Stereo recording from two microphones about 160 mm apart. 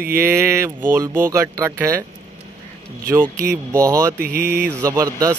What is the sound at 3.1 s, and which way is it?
Speech, 15° right (ahead or behind).